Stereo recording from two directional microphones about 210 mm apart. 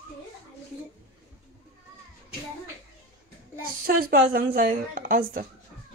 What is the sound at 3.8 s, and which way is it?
A woman's voice, 45° right (ahead or behind).